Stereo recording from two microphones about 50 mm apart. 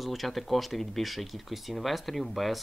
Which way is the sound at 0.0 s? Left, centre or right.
Centre.